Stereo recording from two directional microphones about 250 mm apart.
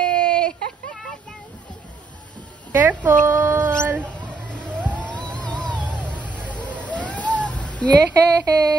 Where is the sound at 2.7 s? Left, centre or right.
Centre.